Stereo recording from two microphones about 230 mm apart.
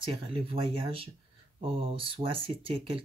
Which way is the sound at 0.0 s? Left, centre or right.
Right.